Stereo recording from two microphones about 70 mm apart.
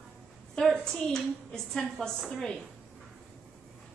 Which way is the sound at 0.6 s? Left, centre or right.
Centre.